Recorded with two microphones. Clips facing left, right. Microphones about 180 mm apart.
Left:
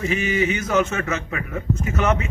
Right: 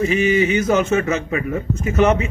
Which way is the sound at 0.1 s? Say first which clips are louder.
Right 5 dB; 25° right (ahead or behind).